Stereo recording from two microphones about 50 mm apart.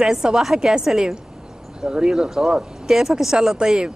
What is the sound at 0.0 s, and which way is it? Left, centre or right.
Speech, centre.